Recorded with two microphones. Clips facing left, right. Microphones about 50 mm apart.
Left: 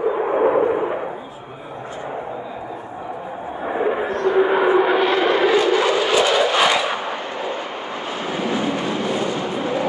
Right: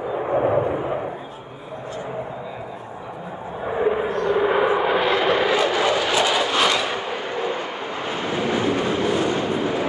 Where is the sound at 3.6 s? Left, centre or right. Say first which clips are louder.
Even; centre.